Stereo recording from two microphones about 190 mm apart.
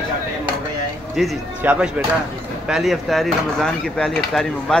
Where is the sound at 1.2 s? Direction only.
5° right (ahead or behind).